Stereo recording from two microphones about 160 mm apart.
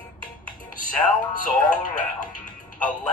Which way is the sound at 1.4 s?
55° left (ahead or behind).